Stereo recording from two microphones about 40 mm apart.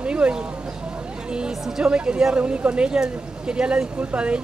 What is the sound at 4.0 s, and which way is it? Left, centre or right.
Speech, right.